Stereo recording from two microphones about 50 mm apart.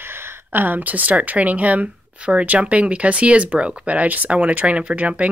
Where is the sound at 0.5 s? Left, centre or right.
Right.